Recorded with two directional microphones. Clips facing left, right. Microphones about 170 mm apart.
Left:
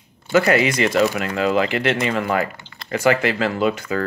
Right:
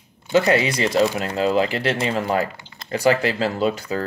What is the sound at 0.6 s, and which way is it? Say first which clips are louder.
Speech: left 1 dB; 30° right (ahead or behind).